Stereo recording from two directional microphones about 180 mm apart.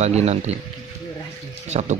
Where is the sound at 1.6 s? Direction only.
40° right (ahead or behind).